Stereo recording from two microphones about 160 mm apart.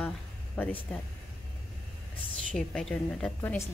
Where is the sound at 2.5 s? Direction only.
5° left (ahead or behind).